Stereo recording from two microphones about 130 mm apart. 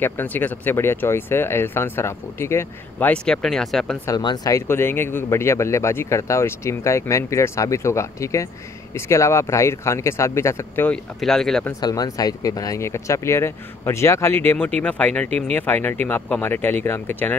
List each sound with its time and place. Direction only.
0.0 s speech: 15° left (ahead or behind)
4.2 s speech: 35° left (ahead or behind)
4.6 s speech: 20° left (ahead or behind)
10.9 s speech: 5° left (ahead or behind)
11.8 s speech: 30° left (ahead or behind)